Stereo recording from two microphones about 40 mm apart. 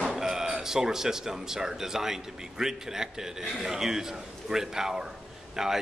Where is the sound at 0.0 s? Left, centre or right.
Centre.